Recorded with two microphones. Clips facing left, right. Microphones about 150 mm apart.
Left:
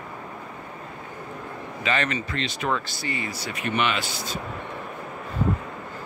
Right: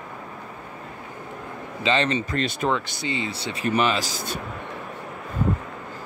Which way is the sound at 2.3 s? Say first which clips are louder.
Right 4 dB; 45° right (ahead or behind).